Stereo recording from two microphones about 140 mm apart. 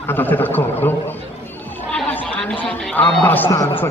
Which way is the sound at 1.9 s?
10° left (ahead or behind).